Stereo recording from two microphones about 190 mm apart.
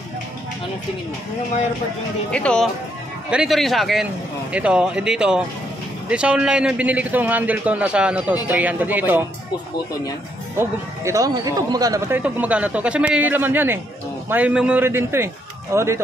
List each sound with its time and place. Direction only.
2.3 s a man's voice: 5° left (ahead or behind)
10.6 s speech: 15° right (ahead or behind)
12.2 s a man's voice: 5° right (ahead or behind)